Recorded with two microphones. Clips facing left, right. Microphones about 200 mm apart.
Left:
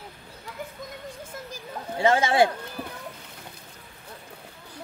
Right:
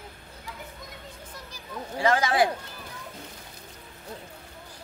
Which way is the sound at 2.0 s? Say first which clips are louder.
Left 3 dB; 25° left (ahead or behind).